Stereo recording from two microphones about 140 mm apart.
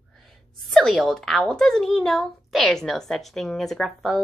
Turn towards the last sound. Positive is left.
turn(degrees=0)  # may be behind; listen again after turning